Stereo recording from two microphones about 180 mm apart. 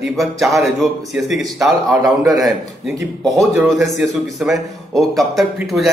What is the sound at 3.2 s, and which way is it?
A man's voice, centre (ahead or behind).